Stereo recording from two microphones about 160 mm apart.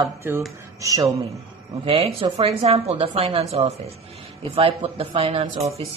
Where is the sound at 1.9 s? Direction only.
35° right (ahead or behind).